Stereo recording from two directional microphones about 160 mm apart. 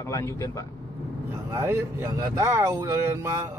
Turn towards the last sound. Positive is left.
turn(degrees=-15)  # may be behind; listen again after turning